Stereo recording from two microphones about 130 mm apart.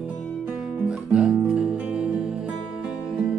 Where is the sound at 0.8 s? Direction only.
5° right (ahead or behind).